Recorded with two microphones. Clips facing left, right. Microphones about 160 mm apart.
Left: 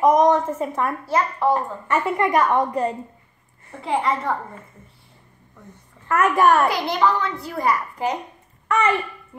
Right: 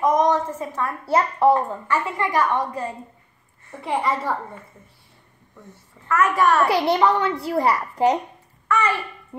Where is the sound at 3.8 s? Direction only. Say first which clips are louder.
Left 1 dB; centre (ahead or behind).